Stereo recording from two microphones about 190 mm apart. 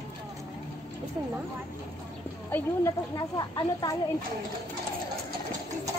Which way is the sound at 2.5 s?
15° left (ahead or behind).